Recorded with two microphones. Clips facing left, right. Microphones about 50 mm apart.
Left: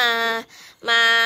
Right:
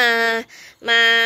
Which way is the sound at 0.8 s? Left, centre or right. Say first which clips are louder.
Right 2 dB; right.